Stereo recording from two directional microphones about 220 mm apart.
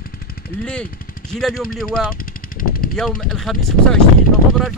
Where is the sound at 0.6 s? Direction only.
5° left (ahead or behind).